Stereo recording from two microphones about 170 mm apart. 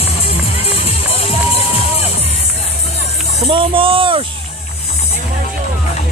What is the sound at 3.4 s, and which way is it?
Speech, 30° right (ahead or behind).